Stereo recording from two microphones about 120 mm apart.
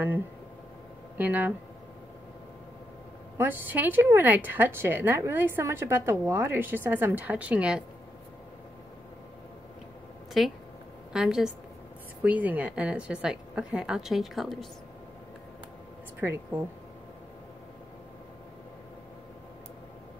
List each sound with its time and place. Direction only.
1.1 s speech: 15° right (ahead or behind)
3.3 s speech: 15° right (ahead or behind)
10.4 s speech: centre (ahead or behind)
16.2 s speech: 20° right (ahead or behind)